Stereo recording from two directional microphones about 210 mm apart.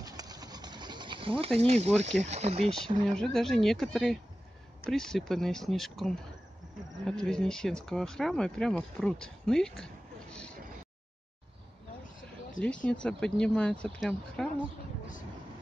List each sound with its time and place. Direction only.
0.0 s a sound: 15° right (ahead or behind)
1.6 s speech: 30° right (ahead or behind)
3.1 s speech: centre (ahead or behind)
12.6 s speech: 5° left (ahead or behind)